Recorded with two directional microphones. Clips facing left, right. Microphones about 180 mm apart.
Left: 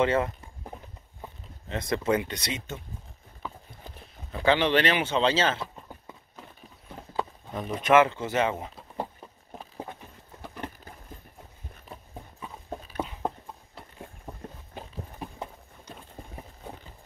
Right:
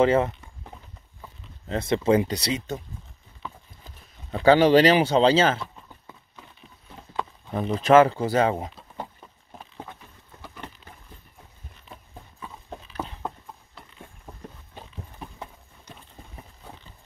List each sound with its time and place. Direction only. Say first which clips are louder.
0.0 s speech: right 5 dB; 30° right (ahead or behind)
1.7 s speech: right 5 dB; 30° right (ahead or behind)
4.3 s speech: right 7 dB; 40° right (ahead or behind)
7.5 s speech: right 4 dB; 30° right (ahead or behind)
10.5 s a sound: left 5 dB; 40° left (ahead or behind)
12.6 s a sound: left 2 dB; 35° left (ahead or behind)